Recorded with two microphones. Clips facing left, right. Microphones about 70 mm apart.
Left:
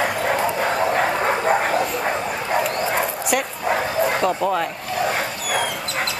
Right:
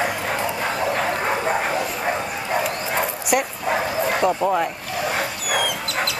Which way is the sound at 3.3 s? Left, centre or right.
Centre.